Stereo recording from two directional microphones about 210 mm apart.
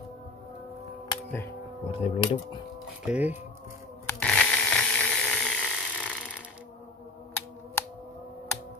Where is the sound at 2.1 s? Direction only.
30° left (ahead or behind).